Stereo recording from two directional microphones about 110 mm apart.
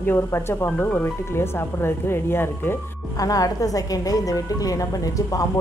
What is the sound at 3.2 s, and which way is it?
A woman's voice, 30° left (ahead or behind).